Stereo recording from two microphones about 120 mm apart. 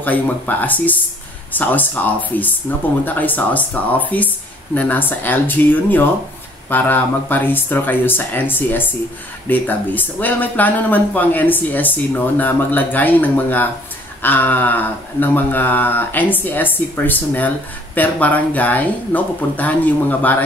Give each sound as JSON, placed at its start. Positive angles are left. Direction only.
{"t": 0.0, "sound": "speech", "side_deg": 15}